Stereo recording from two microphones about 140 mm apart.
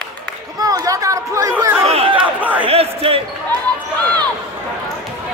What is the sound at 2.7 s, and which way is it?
Basketball bounce, 45° right (ahead or behind).